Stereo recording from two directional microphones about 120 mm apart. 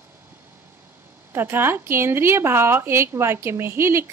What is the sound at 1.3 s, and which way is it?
A woman's voice, 20° right (ahead or behind).